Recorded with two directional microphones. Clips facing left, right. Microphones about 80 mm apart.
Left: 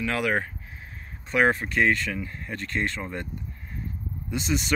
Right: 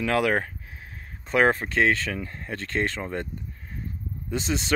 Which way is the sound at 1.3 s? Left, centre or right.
Right.